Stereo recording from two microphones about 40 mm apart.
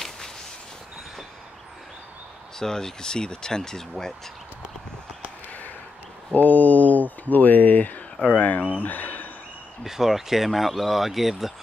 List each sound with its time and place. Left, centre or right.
2.6 s speech: centre
6.3 s speech: left
8.8 s a sound: left
9.8 s speech: centre